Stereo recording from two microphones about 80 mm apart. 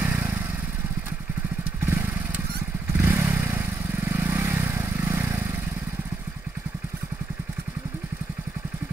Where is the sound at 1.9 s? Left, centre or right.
Right.